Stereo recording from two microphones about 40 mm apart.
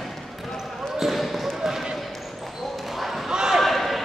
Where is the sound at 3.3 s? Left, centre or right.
Centre.